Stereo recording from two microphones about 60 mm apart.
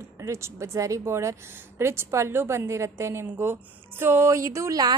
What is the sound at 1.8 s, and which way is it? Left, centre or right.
A woman's voice, right.